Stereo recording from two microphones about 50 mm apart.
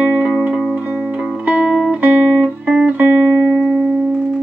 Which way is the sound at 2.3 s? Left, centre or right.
Centre.